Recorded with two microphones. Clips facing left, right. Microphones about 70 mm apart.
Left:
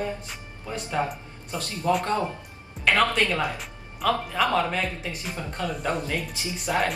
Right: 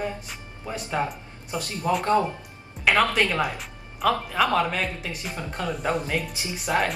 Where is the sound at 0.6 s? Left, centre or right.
Right.